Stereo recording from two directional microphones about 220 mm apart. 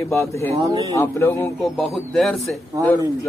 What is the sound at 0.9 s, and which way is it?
A man's voice, 10° left (ahead or behind).